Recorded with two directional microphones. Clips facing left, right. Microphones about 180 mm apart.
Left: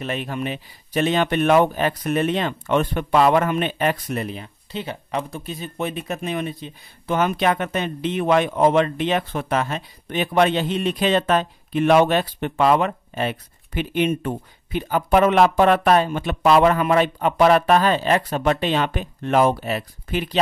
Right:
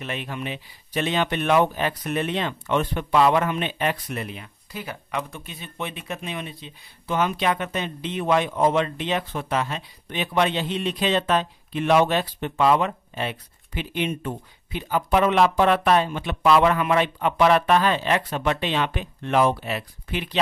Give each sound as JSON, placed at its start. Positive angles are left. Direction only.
{"t": 0.0, "sound": "speech", "side_deg": 40}